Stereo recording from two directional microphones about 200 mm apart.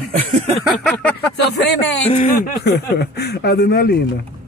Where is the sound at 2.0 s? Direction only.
35° left (ahead or behind).